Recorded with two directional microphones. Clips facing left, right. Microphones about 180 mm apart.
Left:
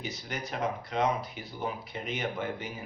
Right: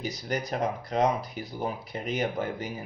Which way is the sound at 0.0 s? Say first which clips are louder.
Right 6 dB; 40° right (ahead or behind).